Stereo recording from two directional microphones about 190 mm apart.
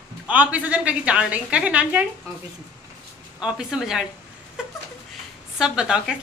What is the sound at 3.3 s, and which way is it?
Speech, 5° right (ahead or behind).